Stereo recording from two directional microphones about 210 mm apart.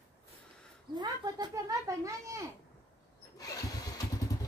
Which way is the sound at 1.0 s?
20° right (ahead or behind).